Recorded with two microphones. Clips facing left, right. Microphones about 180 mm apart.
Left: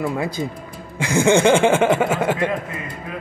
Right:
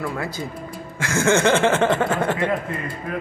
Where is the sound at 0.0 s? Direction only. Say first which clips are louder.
Left 4 dB; 20° left (ahead or behind).